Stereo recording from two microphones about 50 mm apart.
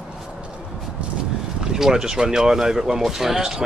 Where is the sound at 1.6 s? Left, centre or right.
Centre.